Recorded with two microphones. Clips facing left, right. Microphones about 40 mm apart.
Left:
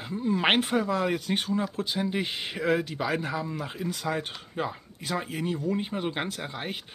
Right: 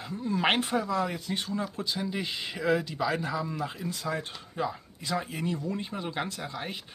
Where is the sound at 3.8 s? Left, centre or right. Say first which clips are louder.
Left 6 dB; left.